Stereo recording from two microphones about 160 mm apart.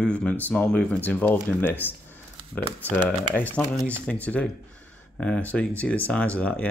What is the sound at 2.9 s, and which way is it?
Speech, 10° left (ahead or behind).